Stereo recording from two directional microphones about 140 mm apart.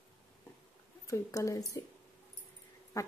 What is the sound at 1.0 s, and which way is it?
Speech, 20° left (ahead or behind).